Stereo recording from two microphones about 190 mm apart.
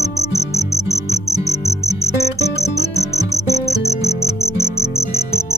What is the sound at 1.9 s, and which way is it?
Music, 20° right (ahead or behind).